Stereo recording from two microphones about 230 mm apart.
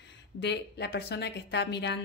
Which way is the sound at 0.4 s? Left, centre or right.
Left.